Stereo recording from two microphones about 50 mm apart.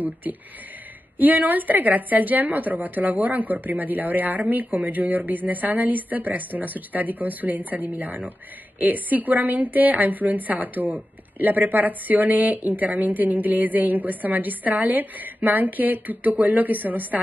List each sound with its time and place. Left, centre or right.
0.0 s a woman's voice: right